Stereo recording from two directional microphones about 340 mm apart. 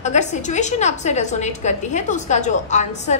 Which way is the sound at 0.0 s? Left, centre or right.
Centre.